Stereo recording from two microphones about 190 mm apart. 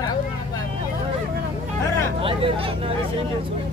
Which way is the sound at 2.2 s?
30° right (ahead or behind).